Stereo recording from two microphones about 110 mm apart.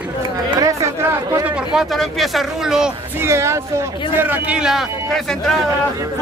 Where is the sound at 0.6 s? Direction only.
30° right (ahead or behind).